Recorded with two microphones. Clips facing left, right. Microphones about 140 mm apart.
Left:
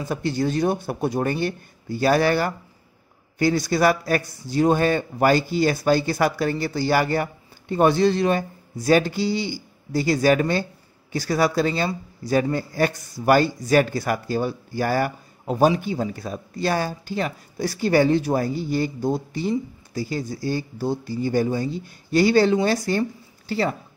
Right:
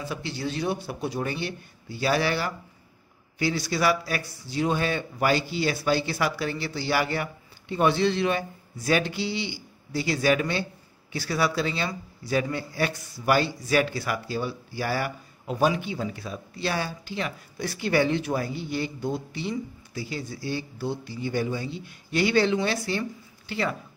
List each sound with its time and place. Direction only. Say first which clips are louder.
0.0 s a man's voice: left 8 dB; 45° left (ahead or behind)